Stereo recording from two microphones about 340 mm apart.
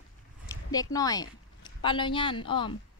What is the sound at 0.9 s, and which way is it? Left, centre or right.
Speech, centre.